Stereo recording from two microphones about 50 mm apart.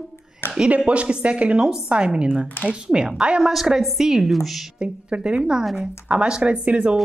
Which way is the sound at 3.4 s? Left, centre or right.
Centre.